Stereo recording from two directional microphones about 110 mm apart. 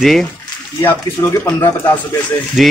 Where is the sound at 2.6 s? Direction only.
Centre (ahead or behind).